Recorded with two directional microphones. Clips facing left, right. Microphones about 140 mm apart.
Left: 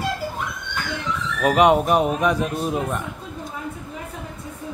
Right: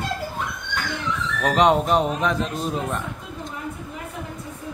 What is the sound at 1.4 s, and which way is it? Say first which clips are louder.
Speech: left 2 dB; 10° left (ahead or behind).